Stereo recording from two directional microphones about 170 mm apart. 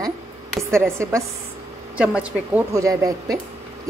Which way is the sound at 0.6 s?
15° right (ahead or behind).